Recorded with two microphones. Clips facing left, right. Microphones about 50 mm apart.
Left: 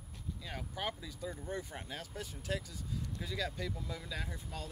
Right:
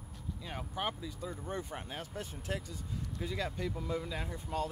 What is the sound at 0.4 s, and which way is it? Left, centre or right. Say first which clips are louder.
Speech: right 3 dB; centre.